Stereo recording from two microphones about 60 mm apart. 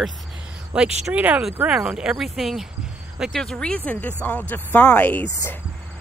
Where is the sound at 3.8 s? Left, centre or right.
Left.